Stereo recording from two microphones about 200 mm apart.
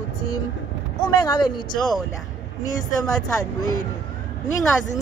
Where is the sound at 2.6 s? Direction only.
20° left (ahead or behind).